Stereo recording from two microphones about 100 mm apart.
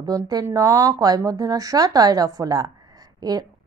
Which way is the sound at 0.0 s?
40° right (ahead or behind).